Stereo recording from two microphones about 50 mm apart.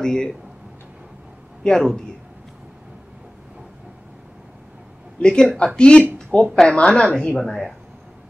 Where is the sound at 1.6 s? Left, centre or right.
Centre.